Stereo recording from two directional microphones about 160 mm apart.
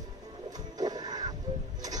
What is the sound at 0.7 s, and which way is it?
Music, 25° right (ahead or behind).